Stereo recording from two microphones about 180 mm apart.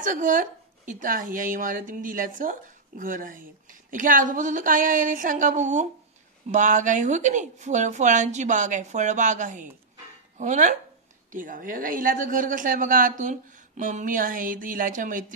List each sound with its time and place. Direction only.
0.0 s speech: 45° right (ahead or behind)